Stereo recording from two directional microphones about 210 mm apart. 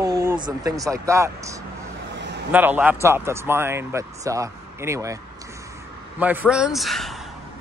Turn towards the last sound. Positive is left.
turn(degrees=0)  # may be behind; listen again after turning